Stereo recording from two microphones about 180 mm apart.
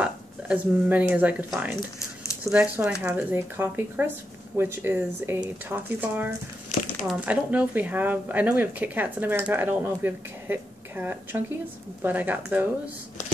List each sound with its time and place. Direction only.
0.0 s speech: 10° right (ahead or behind)
2.0 s a sound: 15° left (ahead or behind)
2.5 s speech: 5° right (ahead or behind)